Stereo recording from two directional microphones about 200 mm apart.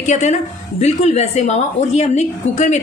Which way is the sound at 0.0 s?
35° left (ahead or behind).